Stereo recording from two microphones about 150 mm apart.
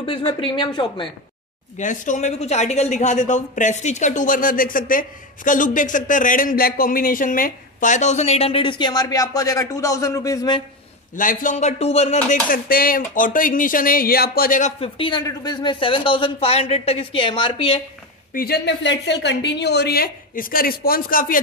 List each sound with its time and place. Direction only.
0.0 s speech: 35° left (ahead or behind)
1.8 s a woman's voice: 55° left (ahead or behind); by 10.6 s 25° left (ahead or behind)
11.1 s a woman's voice: 60° left (ahead or behind)
12.4 s speech: 75° left (ahead or behind)
14.8 s speech: 35° left (ahead or behind)
18.3 s speech: 90° left
19.6 s speech: 90° left; by 21.4 s 70° left (ahead or behind)